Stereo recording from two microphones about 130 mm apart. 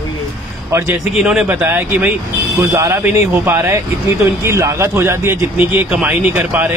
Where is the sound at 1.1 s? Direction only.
5° right (ahead or behind).